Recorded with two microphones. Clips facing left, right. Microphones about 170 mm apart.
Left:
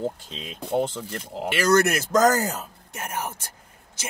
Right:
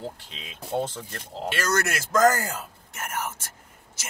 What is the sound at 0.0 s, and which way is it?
Speech, 35° left (ahead or behind).